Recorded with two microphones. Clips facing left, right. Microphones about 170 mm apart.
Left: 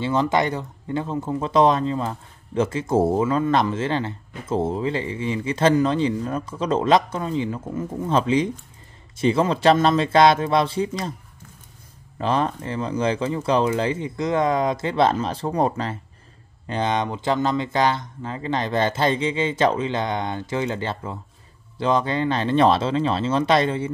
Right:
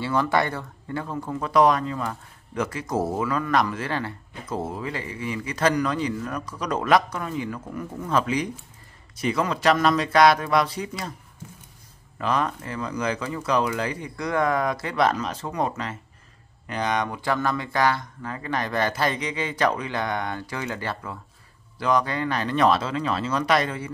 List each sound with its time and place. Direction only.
0.0 s speech: 20° left (ahead or behind)
12.2 s speech: 30° left (ahead or behind)